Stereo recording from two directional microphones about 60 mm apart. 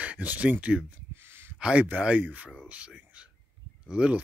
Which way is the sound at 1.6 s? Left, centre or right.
Right.